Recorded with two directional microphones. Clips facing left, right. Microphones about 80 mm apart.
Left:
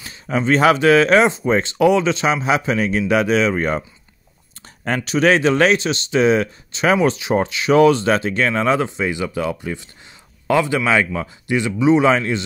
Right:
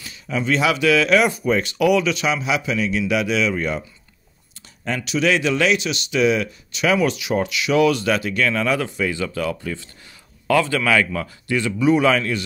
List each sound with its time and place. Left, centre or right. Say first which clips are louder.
0.0 s speech: left 4 dB; left
4.8 s speech: left 4 dB; left